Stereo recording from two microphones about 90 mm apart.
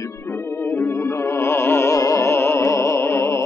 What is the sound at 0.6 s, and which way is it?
Music, 25° left (ahead or behind).